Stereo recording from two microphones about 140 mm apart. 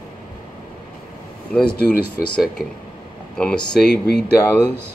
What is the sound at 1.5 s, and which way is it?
Speech, 10° left (ahead or behind).